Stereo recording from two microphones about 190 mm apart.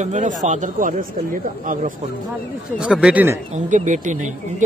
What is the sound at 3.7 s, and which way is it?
Speech, 40° right (ahead or behind).